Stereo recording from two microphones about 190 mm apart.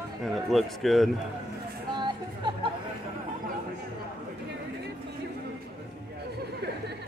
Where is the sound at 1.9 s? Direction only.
25° right (ahead or behind).